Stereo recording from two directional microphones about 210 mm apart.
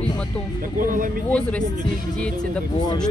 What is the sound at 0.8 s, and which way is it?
Speech, 40° right (ahead or behind).